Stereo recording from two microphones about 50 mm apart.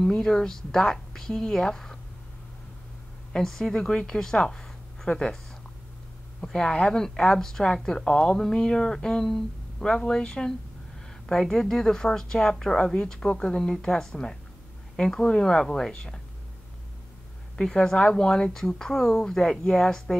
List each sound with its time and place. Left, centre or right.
0.0 s speech: centre
3.3 s speech: centre
6.4 s speech: centre
17.6 s speech: centre